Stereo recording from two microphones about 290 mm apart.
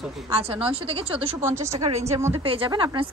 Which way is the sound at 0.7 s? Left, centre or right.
Centre.